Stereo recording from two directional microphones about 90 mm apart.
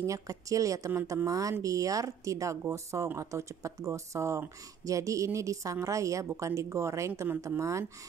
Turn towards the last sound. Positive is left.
turn(degrees=-35)  # may be behind; listen again after turning